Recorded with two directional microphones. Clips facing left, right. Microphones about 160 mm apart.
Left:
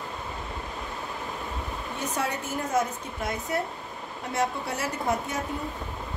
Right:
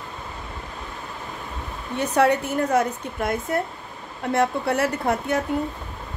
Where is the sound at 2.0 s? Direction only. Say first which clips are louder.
Right 12 dB; 65° right (ahead or behind).